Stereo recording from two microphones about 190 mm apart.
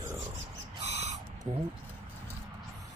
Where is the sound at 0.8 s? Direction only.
35° right (ahead or behind).